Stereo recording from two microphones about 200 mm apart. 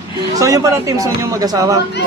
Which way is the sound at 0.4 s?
15° right (ahead or behind).